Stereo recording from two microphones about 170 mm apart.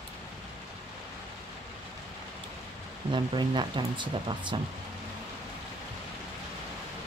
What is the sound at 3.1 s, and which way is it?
Speech, 30° right (ahead or behind).